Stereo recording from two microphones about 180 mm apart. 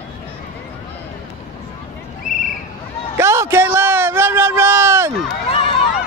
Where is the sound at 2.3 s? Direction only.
45° left (ahead or behind).